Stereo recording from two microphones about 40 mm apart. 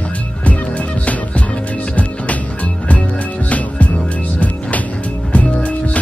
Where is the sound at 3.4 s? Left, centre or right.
Left.